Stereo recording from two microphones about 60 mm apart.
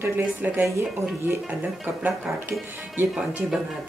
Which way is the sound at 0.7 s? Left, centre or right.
Right.